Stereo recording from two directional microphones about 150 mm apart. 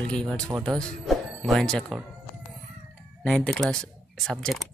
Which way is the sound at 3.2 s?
5° left (ahead or behind).